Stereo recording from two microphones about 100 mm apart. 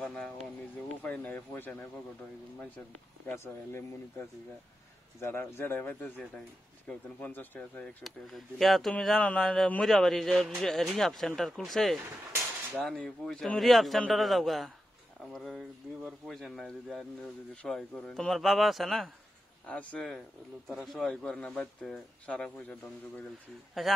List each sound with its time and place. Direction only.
0.0 s speech: 5° left (ahead or behind)
1.0 s speech: 15° left (ahead or behind)
3.3 s speech: 20° left (ahead or behind)
8.0 s a man's voice: centre (ahead or behind)
19.7 s speech: 15° left (ahead or behind)
20.6 s speech: centre (ahead or behind)
23.8 s a man's voice: centre (ahead or behind)